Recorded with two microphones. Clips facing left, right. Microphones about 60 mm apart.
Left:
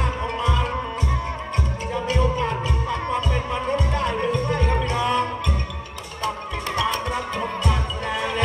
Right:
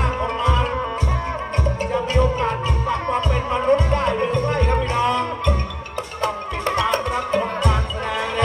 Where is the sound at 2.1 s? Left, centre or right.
Right.